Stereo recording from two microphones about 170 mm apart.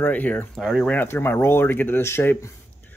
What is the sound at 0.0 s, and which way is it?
Speech, 10° left (ahead or behind).